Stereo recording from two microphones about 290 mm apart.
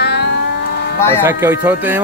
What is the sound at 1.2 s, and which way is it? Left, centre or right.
Speech, centre.